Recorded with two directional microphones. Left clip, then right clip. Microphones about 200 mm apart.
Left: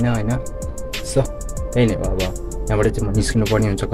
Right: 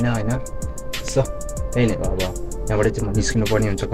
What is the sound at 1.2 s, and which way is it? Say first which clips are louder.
Speech: left 1 dB; 15° left (ahead or behind).